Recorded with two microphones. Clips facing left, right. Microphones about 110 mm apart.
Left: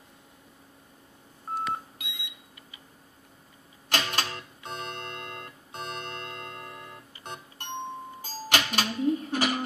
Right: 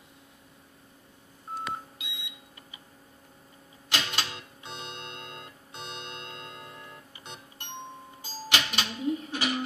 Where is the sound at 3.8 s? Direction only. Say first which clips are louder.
Left 3 dB; 45° left (ahead or behind).